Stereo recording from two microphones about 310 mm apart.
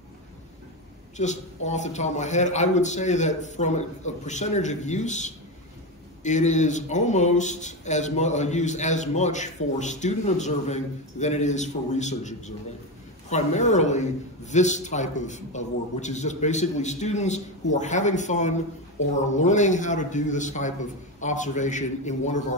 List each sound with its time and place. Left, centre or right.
1.1 s a man's voice: left